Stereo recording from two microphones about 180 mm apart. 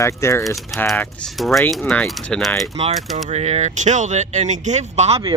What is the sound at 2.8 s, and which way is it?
Speech, 35° right (ahead or behind).